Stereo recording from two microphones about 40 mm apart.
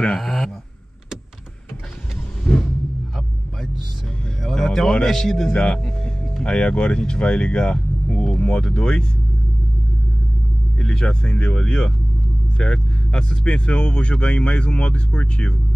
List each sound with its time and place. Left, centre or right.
0.2 s a sound: centre
2.4 s rumble: left
4.4 s a sound: centre
4.6 s speech: centre
5.5 s speech: left
10.8 s speech: left